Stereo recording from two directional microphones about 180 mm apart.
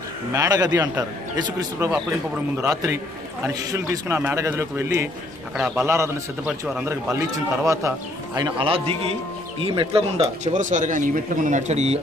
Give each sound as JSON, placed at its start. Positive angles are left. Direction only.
{"t": 0.3, "sound": "a man's voice", "side_deg": -20}
{"t": 1.9, "sound": "a man's voice", "side_deg": -5}
{"t": 8.4, "sound": "speech", "side_deg": -30}